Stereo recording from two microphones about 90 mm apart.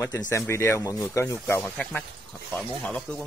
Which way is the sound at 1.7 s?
15° left (ahead or behind).